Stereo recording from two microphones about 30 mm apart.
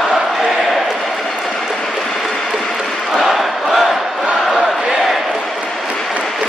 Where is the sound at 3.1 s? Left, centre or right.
Centre.